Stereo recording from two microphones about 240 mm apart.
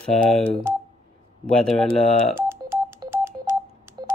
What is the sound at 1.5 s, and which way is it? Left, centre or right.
Speech, centre.